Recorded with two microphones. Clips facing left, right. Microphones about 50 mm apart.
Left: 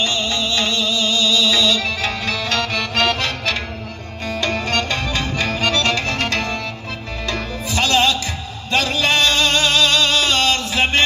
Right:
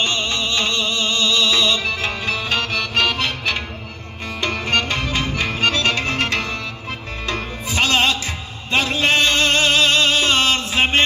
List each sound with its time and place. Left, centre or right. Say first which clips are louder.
0.0 s music: left 1 dB; right; by 11.0 s centre